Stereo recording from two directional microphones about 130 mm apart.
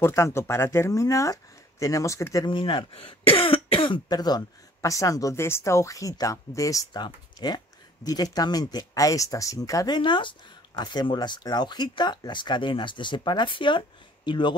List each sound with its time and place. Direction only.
0.0 s speech: 20° left (ahead or behind)
2.4 s speech: 40° left (ahead or behind)